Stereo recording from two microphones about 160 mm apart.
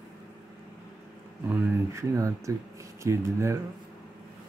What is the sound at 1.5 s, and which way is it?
Speech, 20° right (ahead or behind).